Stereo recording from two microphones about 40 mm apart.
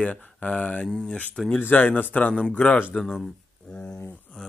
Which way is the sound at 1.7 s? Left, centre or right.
Left.